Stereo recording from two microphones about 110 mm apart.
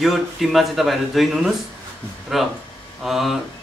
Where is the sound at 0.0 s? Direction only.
Centre (ahead or behind).